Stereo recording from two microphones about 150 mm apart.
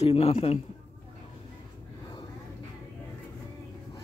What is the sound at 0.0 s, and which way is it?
Speech, 45° left (ahead or behind).